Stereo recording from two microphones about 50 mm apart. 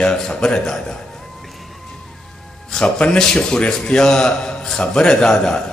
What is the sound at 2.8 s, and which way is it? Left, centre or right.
Speech, centre.